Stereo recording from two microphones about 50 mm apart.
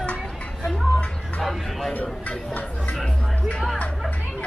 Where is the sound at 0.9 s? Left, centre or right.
Left.